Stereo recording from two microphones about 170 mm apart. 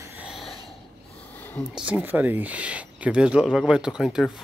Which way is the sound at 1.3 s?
10° left (ahead or behind).